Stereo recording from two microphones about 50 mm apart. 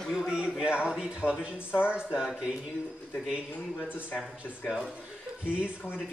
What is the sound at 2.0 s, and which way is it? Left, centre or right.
Speech, centre.